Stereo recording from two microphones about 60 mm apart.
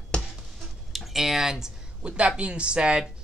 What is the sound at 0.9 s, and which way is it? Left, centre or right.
Speech, centre.